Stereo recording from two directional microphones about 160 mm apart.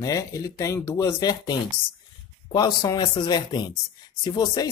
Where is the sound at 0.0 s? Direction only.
20° left (ahead or behind).